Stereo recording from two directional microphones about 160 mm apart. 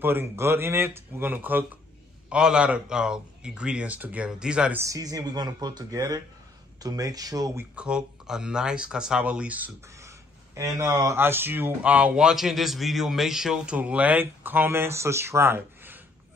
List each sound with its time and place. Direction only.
0.0 s a man's voice: 15° right (ahead or behind)
4.8 s speech: 20° right (ahead or behind)
7.7 s speech: 5° right (ahead or behind)